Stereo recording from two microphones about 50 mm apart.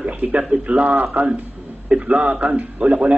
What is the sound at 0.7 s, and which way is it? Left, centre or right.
A man's voice, right.